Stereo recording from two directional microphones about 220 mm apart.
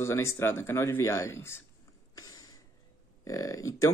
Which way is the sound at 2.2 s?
15° left (ahead or behind).